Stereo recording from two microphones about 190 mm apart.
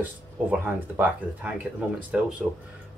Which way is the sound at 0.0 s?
10° right (ahead or behind).